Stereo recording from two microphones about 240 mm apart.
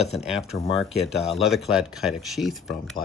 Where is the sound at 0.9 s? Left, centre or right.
Centre.